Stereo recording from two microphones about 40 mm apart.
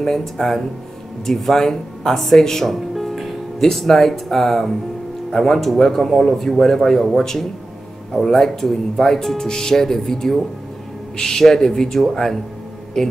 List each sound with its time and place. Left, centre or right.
0.0 s speech: centre